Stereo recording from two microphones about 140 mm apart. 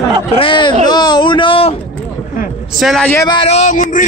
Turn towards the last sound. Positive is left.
turn(degrees=65)  # may be behind; listen again after turning